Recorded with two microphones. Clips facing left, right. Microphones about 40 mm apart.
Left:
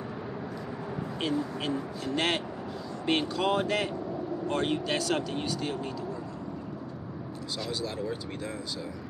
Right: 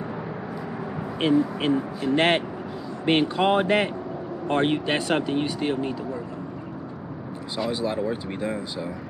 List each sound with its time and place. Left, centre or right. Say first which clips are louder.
1.2 s speech: right 10 dB; right
7.5 s speech: right 8 dB; right